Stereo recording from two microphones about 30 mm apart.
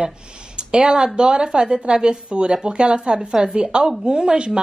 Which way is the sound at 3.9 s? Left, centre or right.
Centre.